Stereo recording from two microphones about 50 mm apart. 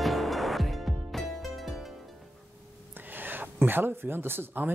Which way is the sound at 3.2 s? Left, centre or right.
Right.